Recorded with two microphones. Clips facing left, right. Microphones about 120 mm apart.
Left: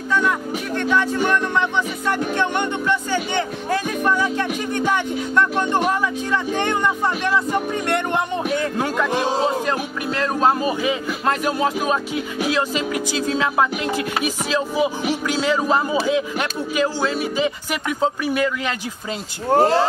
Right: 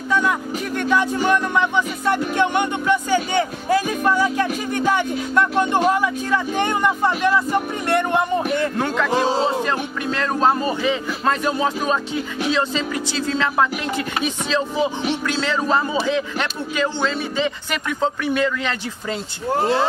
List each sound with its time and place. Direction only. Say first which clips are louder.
0.7 s speech: even; 10° right (ahead or behind)
8.7 s speech: right 1 dB; 15° left (ahead or behind)
19.5 s speech: left 4 dB; 40° left (ahead or behind)